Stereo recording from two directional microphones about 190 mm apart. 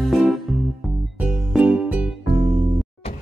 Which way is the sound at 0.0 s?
Centre (ahead or behind).